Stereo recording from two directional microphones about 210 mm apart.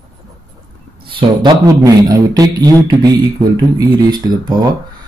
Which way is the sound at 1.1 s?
20° right (ahead or behind).